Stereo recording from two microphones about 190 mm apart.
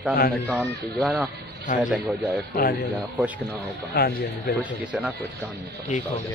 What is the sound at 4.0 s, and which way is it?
Speech, 55° left (ahead or behind).